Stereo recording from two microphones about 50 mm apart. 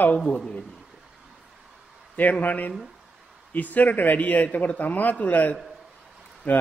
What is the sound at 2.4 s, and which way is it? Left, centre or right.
A man's voice, left.